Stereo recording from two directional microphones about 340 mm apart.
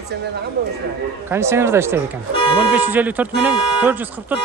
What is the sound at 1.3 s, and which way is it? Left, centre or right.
A man's voice, centre.